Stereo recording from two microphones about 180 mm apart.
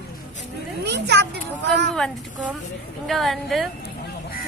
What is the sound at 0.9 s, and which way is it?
Speech, 70° right (ahead or behind).